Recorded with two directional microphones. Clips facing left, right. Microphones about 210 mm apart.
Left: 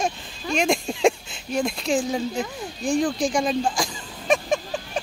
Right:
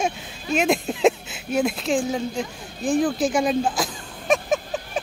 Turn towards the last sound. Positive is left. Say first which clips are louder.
# right 1 dB
turn(degrees=-5)  # may be behind; listen again after turning